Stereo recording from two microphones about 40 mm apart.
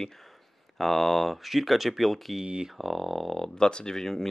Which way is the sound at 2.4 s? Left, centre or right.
Right.